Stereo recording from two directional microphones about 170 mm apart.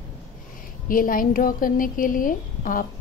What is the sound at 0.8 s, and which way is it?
A woman's voice, 55° left (ahead or behind).